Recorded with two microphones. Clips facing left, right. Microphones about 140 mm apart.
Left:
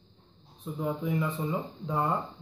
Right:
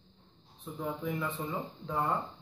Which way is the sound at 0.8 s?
15° left (ahead or behind).